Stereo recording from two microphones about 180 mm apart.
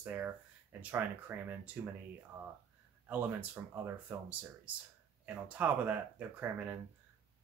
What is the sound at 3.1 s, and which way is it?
Speech, 10° right (ahead or behind).